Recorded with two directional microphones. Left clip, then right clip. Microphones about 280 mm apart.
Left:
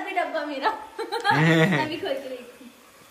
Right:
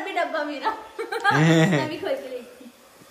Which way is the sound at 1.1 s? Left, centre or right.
Centre.